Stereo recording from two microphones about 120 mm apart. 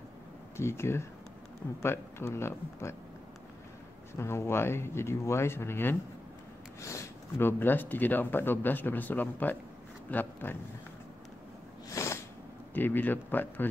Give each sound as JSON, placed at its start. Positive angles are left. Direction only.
{"t": 0.6, "sound": "speech", "side_deg": 20}
{"t": 4.2, "sound": "speech", "side_deg": 20}
{"t": 11.9, "sound": "snort", "side_deg": 25}
{"t": 12.7, "sound": "speech", "side_deg": 15}